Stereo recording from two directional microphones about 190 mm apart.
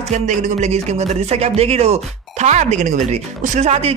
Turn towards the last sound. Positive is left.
turn(degrees=-35)  # may be behind; listen again after turning